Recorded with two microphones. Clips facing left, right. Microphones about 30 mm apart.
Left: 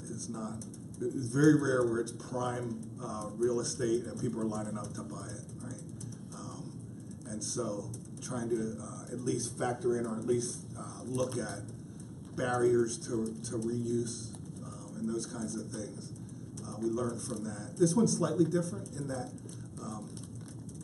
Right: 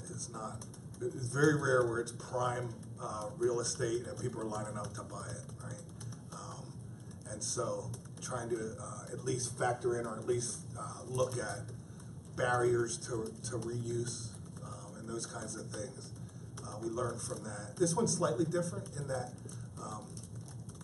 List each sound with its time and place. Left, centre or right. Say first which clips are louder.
0.1 s a sound: left 4 dB; centre
1.0 s speech: left 4 dB; centre
7.2 s speech: left 1 dB; centre
12.4 s speech: left 3 dB; centre